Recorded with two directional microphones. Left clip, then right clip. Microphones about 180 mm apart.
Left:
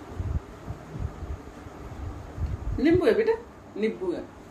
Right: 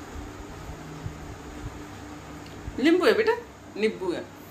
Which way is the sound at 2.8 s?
Centre (ahead or behind).